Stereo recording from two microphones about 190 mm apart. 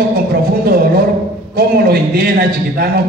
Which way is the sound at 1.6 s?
55° right (ahead or behind).